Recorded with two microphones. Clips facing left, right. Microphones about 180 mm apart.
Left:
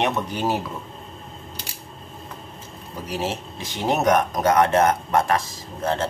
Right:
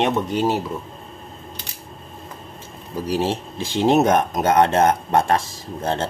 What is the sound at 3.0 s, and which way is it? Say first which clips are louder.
Speech: right 5 dB; 30° right (ahead or behind).